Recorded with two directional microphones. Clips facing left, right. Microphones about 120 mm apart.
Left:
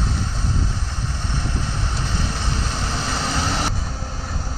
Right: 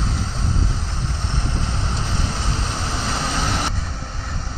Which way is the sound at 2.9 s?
5° right (ahead or behind).